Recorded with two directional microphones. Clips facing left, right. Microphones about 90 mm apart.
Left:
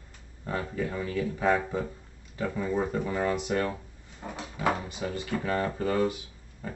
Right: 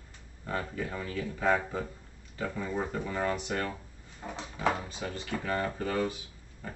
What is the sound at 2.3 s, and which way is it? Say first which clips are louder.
Speech: left 4 dB; 15° left (ahead or behind).